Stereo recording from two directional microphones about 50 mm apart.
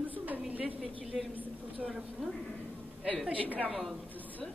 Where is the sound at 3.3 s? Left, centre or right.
Right.